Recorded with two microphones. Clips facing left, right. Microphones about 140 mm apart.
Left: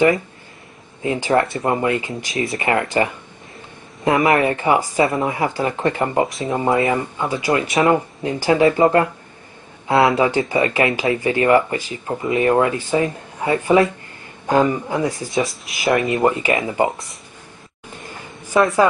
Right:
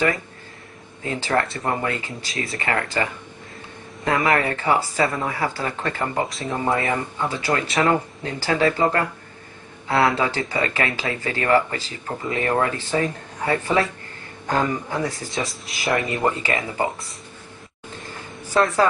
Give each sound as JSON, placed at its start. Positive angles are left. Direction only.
{"t": 1.0, "sound": "speech", "side_deg": 15}
{"t": 18.5, "sound": "speech", "side_deg": 15}